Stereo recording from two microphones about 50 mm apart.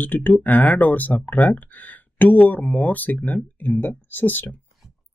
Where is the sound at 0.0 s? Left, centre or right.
Left.